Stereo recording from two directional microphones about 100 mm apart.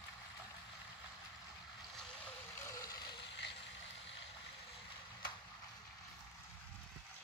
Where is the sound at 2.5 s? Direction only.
30° left (ahead or behind).